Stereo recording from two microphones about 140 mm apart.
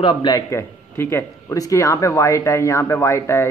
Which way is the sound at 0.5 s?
20° left (ahead or behind).